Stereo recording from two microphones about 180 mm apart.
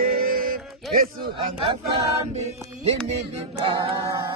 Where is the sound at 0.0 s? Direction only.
55° right (ahead or behind).